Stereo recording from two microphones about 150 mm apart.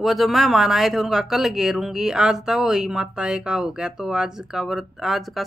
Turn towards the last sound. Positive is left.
turn(degrees=0)  # may be behind; listen again after turning